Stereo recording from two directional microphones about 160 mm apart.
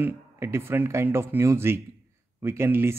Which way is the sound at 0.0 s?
15° right (ahead or behind).